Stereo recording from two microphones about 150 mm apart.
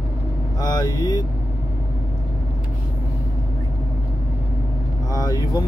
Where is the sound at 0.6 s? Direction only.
25° left (ahead or behind).